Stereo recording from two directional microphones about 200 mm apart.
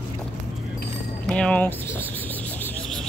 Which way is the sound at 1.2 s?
5° left (ahead or behind).